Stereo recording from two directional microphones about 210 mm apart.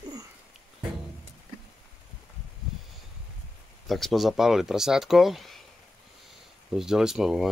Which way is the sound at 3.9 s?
Centre (ahead or behind).